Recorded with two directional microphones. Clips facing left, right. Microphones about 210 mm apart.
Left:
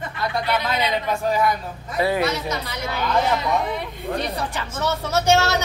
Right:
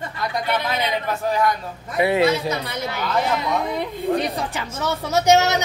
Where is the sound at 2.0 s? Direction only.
25° right (ahead or behind).